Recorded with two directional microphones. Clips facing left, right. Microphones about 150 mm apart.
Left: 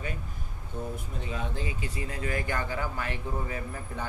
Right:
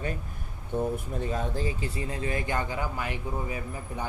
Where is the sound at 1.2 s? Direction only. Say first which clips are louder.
Right 4 dB; 40° right (ahead or behind).